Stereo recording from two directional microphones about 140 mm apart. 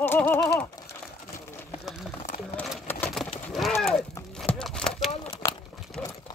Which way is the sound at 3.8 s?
Centre (ahead or behind).